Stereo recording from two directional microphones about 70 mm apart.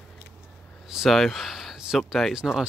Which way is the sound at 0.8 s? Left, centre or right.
Centre.